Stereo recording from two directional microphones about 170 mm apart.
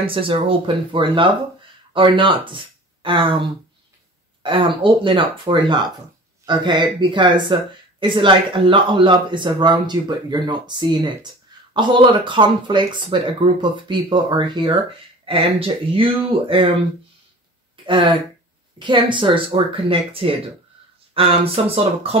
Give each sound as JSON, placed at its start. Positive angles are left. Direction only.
{"t": 0.0, "sound": "speech", "side_deg": -30}
{"t": 17.8, "sound": "speech", "side_deg": -30}